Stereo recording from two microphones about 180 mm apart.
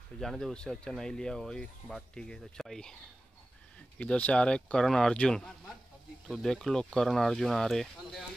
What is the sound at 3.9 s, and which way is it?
Speech, 5° left (ahead or behind).